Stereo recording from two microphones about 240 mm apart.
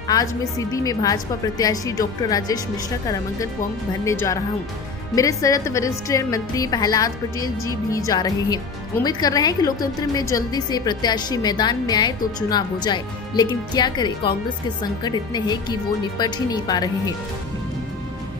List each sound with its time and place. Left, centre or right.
0.1 s a woman's voice: centre
4.0 s a woman's voice: centre